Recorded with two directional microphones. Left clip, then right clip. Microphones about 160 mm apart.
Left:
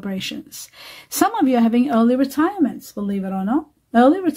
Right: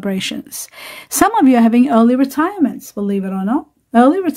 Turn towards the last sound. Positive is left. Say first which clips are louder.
# right 3 dB
turn(degrees=-25)  # may be behind; listen again after turning